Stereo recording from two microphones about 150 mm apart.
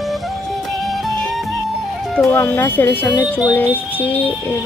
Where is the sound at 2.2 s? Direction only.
15° left (ahead or behind).